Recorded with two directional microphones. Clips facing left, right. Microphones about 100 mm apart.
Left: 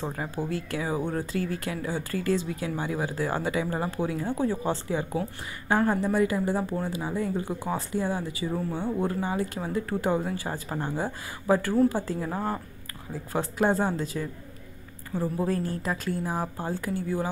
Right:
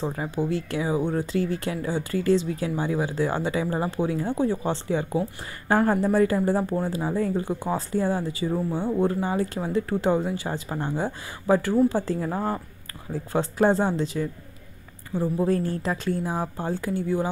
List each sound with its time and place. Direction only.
0.1 s speech: 20° right (ahead or behind)
5.7 s speech: 40° right (ahead or behind)
15.1 s a woman's voice: 5° left (ahead or behind)
15.6 s speech: 30° right (ahead or behind)